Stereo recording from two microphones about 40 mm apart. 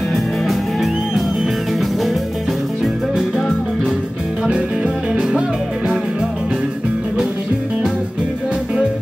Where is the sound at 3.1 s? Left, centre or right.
Centre.